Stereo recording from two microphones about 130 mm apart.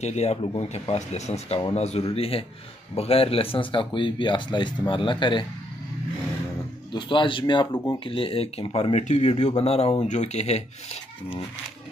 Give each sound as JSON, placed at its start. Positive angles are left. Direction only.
{"t": 0.0, "sound": "speech", "side_deg": 55}
{"t": 6.9, "sound": "speech", "side_deg": 40}
{"t": 7.7, "sound": "speech", "side_deg": 15}
{"t": 8.0, "sound": "speech", "side_deg": 45}